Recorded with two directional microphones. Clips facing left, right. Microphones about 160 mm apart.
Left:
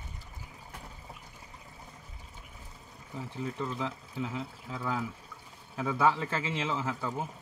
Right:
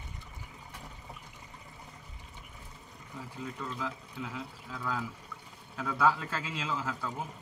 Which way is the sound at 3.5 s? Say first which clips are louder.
Left 2 dB; 25° left (ahead or behind).